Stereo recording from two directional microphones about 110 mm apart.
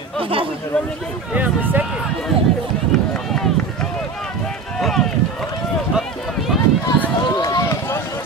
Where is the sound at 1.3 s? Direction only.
15° right (ahead or behind).